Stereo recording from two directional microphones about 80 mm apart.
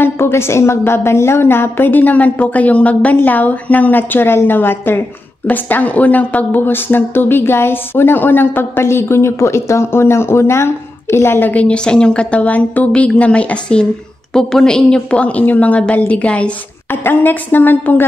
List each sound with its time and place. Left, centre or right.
0.0 s a woman's voice: left